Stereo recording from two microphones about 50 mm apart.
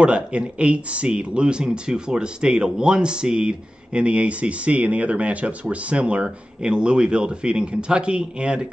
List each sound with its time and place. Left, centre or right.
0.0 s speech: right